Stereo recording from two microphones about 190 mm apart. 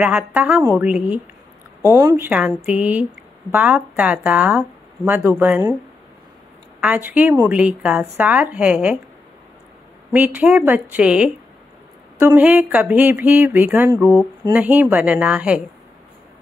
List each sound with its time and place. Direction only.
0.0 s speech: 10° right (ahead or behind)
6.8 s speech: 5° right (ahead or behind)
10.1 s speech: 10° right (ahead or behind)